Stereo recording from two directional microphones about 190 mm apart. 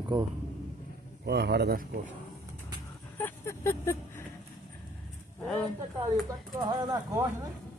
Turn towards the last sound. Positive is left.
turn(degrees=-20)  # may be behind; listen again after turning